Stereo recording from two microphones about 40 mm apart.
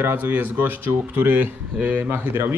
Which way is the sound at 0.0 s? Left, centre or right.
Right.